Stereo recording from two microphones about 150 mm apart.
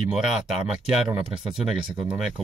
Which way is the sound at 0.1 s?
5° right (ahead or behind).